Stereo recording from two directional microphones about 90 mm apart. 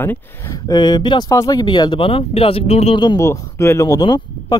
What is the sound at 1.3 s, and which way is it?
Speech, 40° left (ahead or behind).